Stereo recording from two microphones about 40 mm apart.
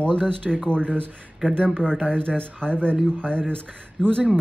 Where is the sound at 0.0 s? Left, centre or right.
Left.